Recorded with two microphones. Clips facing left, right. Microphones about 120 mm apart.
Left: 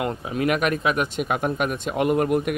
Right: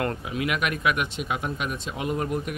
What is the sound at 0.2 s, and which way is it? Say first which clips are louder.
Speech: left 5 dB; 40° left (ahead or behind).